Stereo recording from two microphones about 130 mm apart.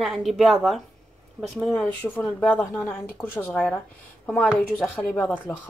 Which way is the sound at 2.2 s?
Centre (ahead or behind).